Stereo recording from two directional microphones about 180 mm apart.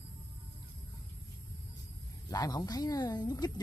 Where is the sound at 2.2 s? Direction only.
20° left (ahead or behind).